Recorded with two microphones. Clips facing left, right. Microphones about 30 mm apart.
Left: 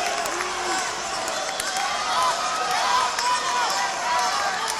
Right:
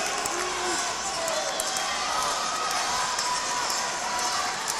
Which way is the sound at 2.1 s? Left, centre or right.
Left.